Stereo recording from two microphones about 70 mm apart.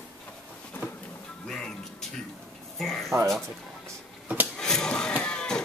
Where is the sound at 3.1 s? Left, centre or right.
Right.